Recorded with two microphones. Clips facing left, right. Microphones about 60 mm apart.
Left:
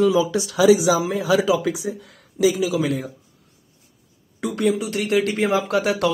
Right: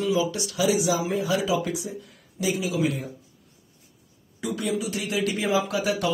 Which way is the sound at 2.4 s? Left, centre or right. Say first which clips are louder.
Left 6 dB; left.